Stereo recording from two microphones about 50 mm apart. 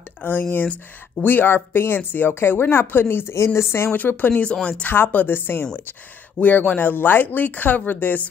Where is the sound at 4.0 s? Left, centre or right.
Left.